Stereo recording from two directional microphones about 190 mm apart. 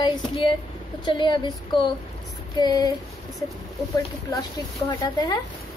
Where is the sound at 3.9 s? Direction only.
20° left (ahead or behind).